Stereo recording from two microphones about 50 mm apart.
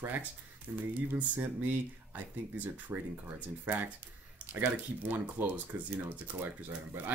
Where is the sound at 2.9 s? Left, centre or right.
Right.